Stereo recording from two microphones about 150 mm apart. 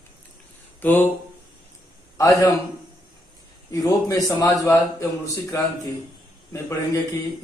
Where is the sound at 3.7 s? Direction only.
20° left (ahead or behind).